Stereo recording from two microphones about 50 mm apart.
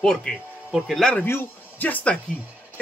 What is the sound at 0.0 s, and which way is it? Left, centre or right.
Speech, centre.